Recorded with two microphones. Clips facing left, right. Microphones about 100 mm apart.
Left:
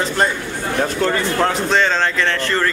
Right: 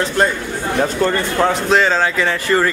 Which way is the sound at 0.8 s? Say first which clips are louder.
Right 1 dB; centre (ahead or behind).